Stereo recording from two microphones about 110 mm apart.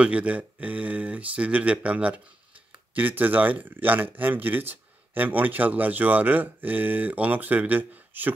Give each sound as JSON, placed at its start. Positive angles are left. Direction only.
{"t": 0.0, "sound": "speech", "side_deg": -10}